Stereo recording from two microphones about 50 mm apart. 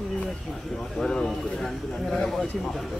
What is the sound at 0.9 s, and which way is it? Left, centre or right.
Speech, centre.